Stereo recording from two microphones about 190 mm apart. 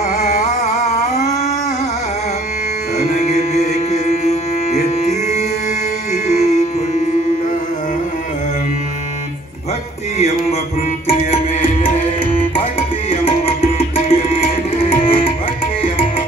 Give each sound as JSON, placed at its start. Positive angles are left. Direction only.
{"t": 0.0, "sound": "music", "side_deg": 35}
{"t": 1.1, "sound": "dog", "side_deg": 35}
{"t": 3.1, "sound": "music", "side_deg": 35}
{"t": 11.1, "sound": "music", "side_deg": 30}
{"t": 12.4, "sound": "tabla", "side_deg": 30}
{"t": 14.5, "sound": "music", "side_deg": 30}